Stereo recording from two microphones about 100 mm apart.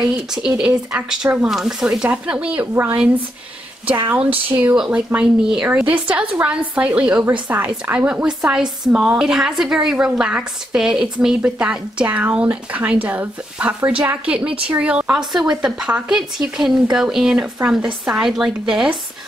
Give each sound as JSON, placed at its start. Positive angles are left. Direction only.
{"t": 0.0, "sound": "a woman's voice", "side_deg": -5}
{"t": 4.1, "sound": "a woman's voice", "side_deg": -15}
{"t": 4.7, "sound": "a woman's voice", "side_deg": -5}